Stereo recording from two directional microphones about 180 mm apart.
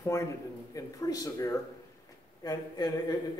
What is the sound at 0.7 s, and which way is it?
A man's voice, 20° left (ahead or behind).